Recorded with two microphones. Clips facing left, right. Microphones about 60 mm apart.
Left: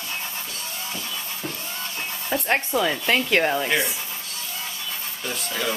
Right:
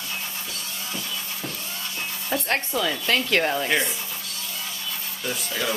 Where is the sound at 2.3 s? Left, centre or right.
Centre.